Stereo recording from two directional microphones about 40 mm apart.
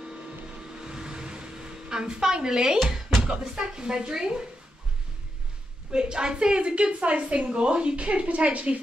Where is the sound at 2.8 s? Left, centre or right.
Centre.